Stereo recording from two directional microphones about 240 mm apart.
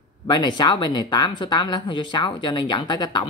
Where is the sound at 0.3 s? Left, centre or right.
Centre.